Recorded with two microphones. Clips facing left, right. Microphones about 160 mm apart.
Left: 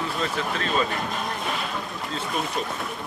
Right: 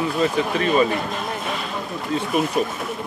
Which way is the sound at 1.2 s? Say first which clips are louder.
Right 2 dB; centre (ahead or behind).